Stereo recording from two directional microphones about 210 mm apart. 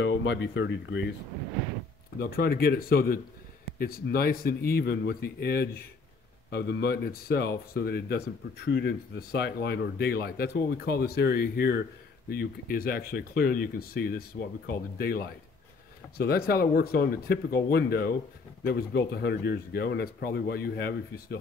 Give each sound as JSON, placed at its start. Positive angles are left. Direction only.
{"t": 0.0, "sound": "speech", "side_deg": 60}
{"t": 2.1, "sound": "speech", "side_deg": 45}